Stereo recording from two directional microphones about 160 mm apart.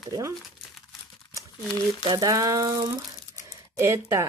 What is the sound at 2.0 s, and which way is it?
Speech, 25° right (ahead or behind).